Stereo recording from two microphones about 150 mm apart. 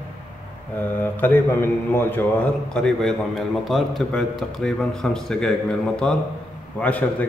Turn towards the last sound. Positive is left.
turn(degrees=10)  # may be behind; listen again after turning